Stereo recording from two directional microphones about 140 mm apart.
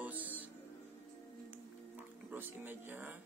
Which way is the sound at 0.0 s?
10° right (ahead or behind).